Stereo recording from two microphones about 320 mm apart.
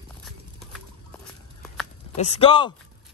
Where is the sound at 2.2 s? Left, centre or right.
Centre.